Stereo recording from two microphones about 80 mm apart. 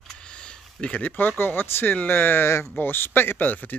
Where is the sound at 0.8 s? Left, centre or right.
Centre.